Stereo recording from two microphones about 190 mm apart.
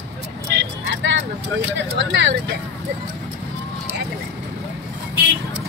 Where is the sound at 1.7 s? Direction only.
70° right (ahead or behind).